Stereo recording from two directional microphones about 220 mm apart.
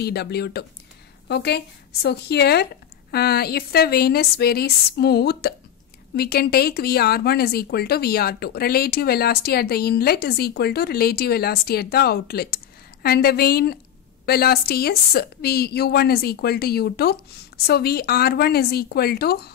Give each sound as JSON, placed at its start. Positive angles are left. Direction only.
{"t": 0.0, "sound": "speech", "side_deg": 45}